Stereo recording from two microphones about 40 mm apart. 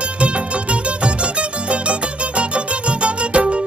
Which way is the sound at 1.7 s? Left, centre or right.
Right.